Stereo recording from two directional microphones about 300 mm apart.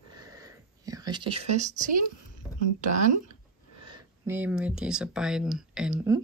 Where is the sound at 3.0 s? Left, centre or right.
Right.